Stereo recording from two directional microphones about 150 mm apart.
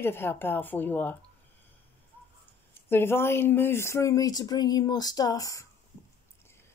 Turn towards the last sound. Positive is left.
turn(degrees=25)  # may be behind; listen again after turning